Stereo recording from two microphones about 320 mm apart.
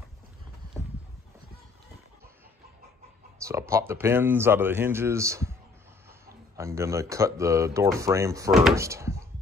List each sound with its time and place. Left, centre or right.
3.4 s speech: centre